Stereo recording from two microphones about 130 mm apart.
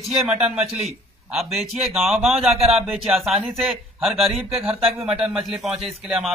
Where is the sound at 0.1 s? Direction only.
5° right (ahead or behind).